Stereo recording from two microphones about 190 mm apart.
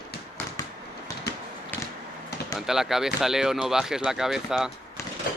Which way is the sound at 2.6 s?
Centre (ahead or behind).